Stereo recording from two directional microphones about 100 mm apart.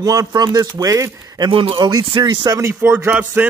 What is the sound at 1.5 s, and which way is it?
Speech, 60° right (ahead or behind).